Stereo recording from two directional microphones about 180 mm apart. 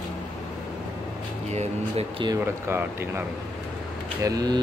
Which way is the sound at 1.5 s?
35° right (ahead or behind).